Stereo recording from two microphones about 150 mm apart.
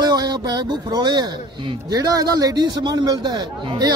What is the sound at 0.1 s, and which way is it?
A man's voice, 25° right (ahead or behind).